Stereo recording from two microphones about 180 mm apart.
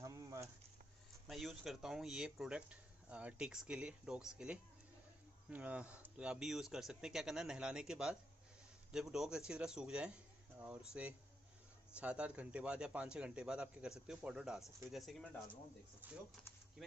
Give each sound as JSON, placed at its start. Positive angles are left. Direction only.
{"t": 0.0, "sound": "a sound", "side_deg": -15}
{"t": 1.2, "sound": "speech", "side_deg": 0}
{"t": 16.0, "sound": "speech", "side_deg": -10}